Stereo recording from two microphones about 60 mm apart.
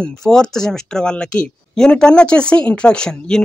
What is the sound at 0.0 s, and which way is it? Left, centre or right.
Speech, centre.